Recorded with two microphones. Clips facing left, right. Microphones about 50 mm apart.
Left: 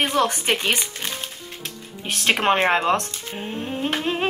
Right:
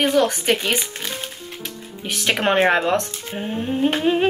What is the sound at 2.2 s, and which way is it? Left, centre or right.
Humming, centre.